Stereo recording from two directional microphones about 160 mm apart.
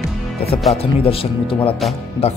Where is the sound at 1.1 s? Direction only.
35° left (ahead or behind).